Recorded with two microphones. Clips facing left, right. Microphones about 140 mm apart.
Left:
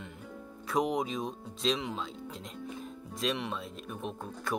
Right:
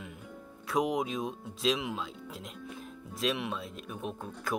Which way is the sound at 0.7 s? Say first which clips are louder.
Even; centre (ahead or behind).